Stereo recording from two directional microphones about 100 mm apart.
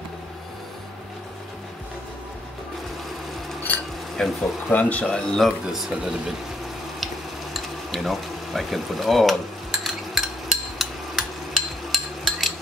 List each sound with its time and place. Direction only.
3.7 s dishes: 15° left (ahead or behind)
4.2 s speech: 5° left (ahead or behind)
7.5 s frying: centre (ahead or behind)